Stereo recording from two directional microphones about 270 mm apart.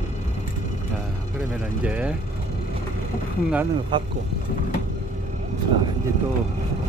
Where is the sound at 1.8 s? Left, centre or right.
Centre.